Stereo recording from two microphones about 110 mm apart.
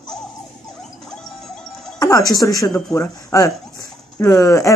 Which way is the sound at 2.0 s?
35° left (ahead or behind).